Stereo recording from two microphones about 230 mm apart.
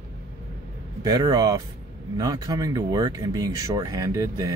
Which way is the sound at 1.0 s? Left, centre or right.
Centre.